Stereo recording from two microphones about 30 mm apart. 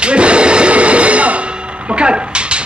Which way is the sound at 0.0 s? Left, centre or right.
Right.